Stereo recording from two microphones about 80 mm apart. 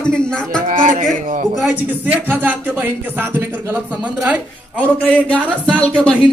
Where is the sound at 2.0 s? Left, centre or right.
Right.